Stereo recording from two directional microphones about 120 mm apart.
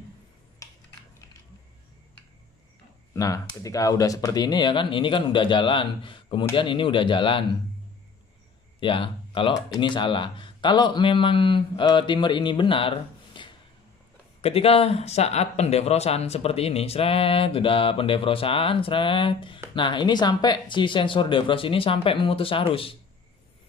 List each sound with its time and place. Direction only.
3.1 s speech: 30° left (ahead or behind); by 7.4 s 45° left (ahead or behind)
8.7 s speech: 45° left (ahead or behind)
14.4 s speech: 55° left (ahead or behind)